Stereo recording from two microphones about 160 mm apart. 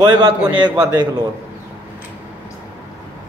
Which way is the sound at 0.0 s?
25° right (ahead or behind).